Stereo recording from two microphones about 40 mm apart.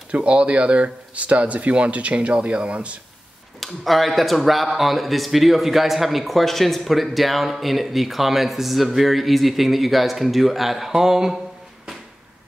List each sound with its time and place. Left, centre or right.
0.1 s speech: right
3.6 s speech: centre